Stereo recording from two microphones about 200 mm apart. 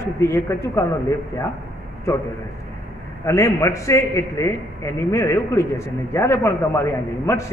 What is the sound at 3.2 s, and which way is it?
A man's voice, 15° left (ahead or behind).